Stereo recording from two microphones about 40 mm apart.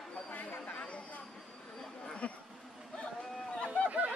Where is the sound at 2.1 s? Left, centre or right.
Left.